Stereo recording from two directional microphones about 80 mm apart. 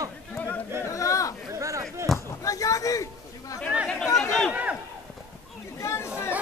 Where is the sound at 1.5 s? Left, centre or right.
Right.